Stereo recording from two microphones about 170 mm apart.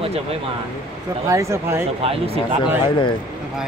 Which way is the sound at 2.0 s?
35° right (ahead or behind).